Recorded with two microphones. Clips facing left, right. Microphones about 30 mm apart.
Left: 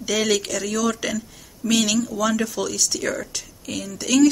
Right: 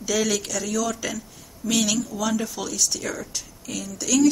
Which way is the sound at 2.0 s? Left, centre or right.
Left.